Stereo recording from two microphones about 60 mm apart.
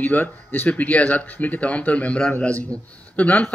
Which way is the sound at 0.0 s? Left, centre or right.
Left.